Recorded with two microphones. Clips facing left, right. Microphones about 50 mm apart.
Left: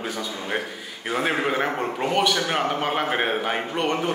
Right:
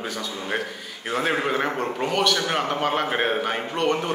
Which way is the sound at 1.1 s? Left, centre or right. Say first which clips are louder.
Even; centre.